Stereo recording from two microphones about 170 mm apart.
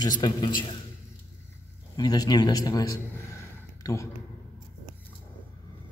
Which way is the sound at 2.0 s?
25° left (ahead or behind).